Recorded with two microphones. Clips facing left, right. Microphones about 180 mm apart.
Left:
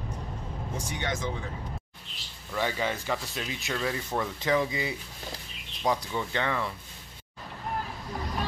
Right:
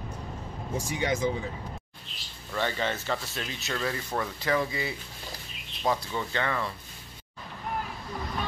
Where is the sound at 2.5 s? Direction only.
10° left (ahead or behind).